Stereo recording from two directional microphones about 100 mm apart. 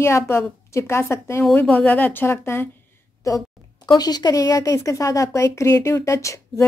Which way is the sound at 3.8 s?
45° left (ahead or behind).